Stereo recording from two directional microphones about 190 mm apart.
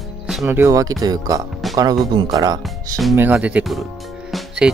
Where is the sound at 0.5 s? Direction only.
15° right (ahead or behind).